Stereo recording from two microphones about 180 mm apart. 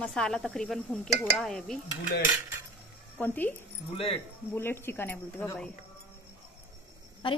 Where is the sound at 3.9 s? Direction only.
30° left (ahead or behind).